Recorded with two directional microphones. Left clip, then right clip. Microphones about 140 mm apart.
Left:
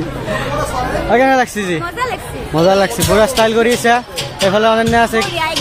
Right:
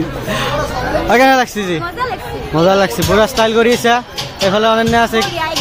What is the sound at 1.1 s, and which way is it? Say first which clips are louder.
Speech: right 2 dB; 35° right (ahead or behind).